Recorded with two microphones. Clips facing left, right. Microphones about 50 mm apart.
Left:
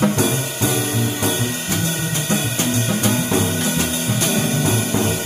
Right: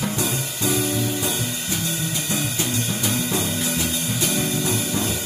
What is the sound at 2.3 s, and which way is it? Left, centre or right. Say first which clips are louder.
Music: left 6 dB; left.